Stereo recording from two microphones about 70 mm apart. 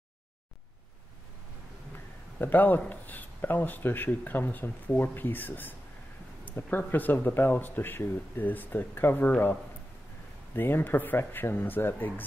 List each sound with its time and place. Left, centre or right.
2.3 s speech: left